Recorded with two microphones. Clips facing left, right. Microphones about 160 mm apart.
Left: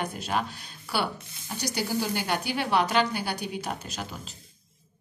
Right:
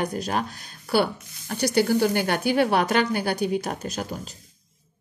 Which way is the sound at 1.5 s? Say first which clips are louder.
Right 9 dB; 55° right (ahead or behind).